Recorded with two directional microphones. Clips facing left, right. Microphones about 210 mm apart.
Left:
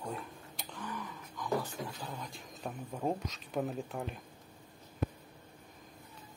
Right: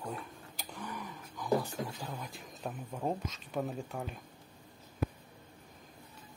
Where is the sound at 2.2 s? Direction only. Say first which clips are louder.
Right 1 dB; 5° right (ahead or behind).